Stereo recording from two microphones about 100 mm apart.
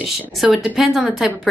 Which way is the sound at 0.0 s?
Centre (ahead or behind).